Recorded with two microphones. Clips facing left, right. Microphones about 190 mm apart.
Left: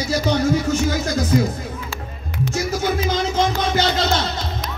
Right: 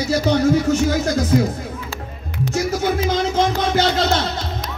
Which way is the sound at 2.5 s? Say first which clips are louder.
Right 2 dB; 55° right (ahead or behind).